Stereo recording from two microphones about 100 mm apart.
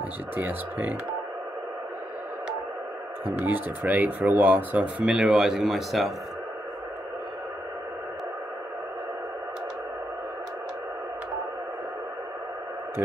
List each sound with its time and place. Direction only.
0.4 s speech: 20° right (ahead or behind)
3.3 s speech: 15° right (ahead or behind); by 6.1 s centre (ahead or behind)